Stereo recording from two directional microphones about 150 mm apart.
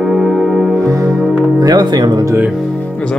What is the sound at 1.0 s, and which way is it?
Music, 5° right (ahead or behind).